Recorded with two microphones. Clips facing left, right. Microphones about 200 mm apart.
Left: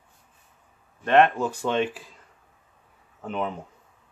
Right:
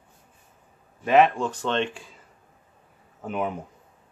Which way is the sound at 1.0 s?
5° right (ahead or behind).